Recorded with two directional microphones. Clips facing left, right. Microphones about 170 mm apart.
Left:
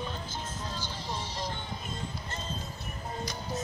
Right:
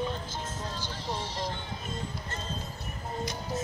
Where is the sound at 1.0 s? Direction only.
30° right (ahead or behind).